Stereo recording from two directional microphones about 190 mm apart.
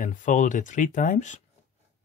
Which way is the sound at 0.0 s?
40° left (ahead or behind).